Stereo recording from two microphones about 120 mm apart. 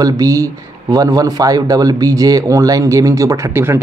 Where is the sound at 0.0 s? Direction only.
30° right (ahead or behind).